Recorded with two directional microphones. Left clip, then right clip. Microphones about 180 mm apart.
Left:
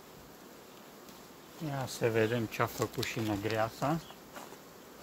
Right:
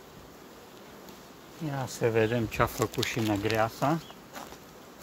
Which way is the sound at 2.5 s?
40° right (ahead or behind).